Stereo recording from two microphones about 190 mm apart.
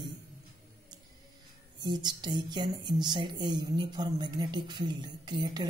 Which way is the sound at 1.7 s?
20° right (ahead or behind).